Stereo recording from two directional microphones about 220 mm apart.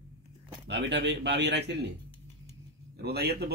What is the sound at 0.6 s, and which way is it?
A man's voice, 50° right (ahead or behind).